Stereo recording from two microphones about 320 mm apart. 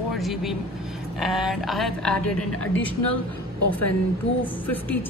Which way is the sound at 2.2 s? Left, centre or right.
Left.